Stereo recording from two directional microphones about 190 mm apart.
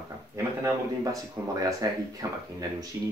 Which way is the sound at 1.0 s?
20° right (ahead or behind).